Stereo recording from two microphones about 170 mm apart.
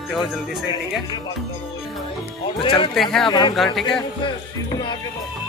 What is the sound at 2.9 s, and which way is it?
Speech, centre (ahead or behind).